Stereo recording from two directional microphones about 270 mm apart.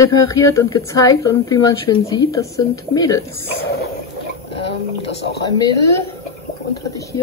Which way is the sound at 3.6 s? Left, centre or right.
Left.